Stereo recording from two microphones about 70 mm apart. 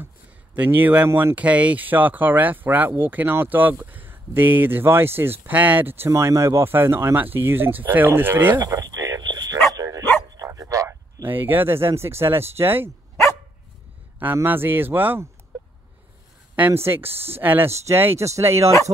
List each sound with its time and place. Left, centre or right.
0.6 s speech: right
6.0 s speech: right
8.5 s radio: right
9.3 s bow-wow: right
9.8 s dog: right
10.4 s bow-wow: right
11.2 s speech: right
14.2 s speech: right
15.5 s a sound: centre
16.7 s speech: right
17.6 s speech: right